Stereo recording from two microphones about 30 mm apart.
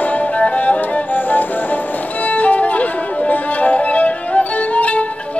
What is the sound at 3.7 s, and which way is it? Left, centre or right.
Music, left.